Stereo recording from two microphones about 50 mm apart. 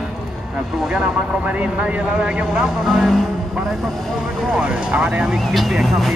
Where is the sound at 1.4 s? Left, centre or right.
Right.